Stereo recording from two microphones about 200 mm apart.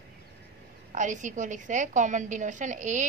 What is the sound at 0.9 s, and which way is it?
A woman's voice, 40° right (ahead or behind).